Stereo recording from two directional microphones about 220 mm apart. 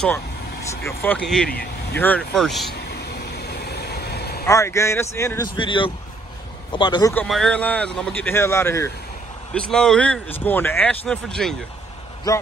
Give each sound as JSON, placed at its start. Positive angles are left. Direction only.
{"t": 0.7, "sound": "speech", "side_deg": 10}
{"t": 1.5, "sound": "vehicle", "side_deg": 45}
{"t": 2.0, "sound": "speech", "side_deg": 5}
{"t": 2.9, "sound": "vehicle", "side_deg": 45}
{"t": 4.5, "sound": "a man's voice", "side_deg": 15}
{"t": 7.2, "sound": "speech", "side_deg": 0}
{"t": 12.3, "sound": "speech", "side_deg": 15}